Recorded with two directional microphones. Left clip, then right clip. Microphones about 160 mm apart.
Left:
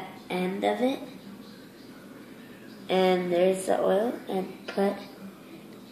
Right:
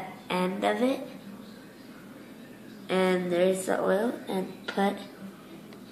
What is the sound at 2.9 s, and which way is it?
Speech, 45° right (ahead or behind).